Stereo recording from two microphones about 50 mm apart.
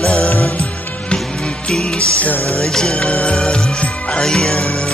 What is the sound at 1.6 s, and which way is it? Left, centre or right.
Music, centre.